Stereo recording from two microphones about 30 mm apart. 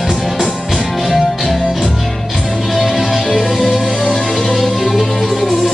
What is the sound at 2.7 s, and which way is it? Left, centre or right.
Music, centre.